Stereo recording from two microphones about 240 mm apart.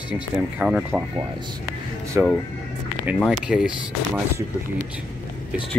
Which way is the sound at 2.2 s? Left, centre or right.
Centre.